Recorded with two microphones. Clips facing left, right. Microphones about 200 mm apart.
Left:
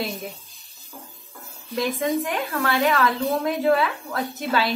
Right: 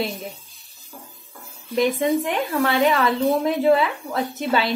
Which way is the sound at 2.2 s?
25° right (ahead or behind).